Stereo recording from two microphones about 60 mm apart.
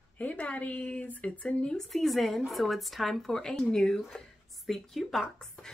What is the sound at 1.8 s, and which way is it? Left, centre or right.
A woman's voice, centre.